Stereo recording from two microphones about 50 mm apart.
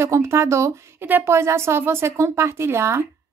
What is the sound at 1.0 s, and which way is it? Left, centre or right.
Speech, right.